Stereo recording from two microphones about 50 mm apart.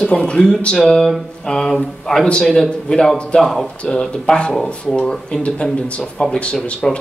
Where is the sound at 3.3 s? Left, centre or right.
Centre.